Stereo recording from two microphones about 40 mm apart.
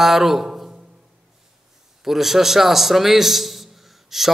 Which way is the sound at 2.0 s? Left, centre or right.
Centre.